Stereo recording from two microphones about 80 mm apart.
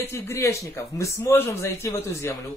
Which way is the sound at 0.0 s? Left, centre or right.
Left.